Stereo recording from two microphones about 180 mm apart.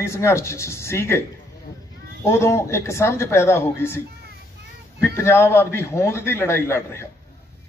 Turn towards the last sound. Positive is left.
turn(degrees=15)  # may be behind; listen again after turning